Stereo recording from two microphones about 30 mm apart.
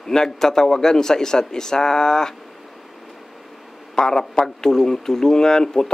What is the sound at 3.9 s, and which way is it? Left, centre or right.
A man's voice, left.